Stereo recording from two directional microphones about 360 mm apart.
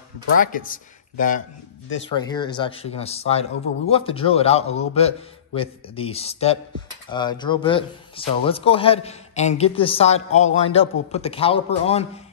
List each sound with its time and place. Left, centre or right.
0.4 s speech: left
2.0 s a man's voice: centre